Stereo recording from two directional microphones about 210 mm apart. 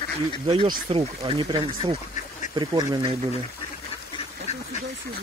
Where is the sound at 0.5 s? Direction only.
25° right (ahead or behind).